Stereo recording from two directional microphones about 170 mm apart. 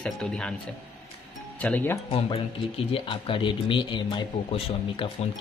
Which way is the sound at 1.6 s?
10° left (ahead or behind).